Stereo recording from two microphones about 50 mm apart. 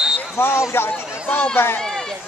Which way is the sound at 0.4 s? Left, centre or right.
Left.